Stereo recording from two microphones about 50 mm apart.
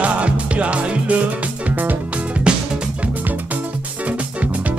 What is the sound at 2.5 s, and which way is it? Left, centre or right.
Music, centre.